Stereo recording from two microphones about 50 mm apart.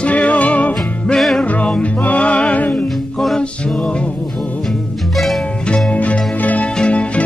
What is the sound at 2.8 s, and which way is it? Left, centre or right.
Music, centre.